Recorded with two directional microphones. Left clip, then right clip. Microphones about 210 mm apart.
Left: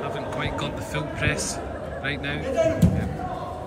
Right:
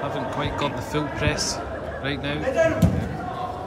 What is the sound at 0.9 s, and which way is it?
Speech, 15° right (ahead or behind).